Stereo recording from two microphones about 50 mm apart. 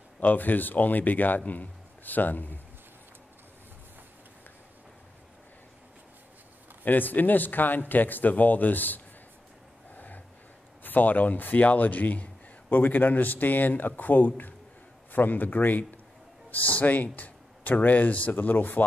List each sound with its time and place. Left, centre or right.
0.2 s speech: left
6.8 s speech: left
9.9 s a sound: left
10.8 s speech: left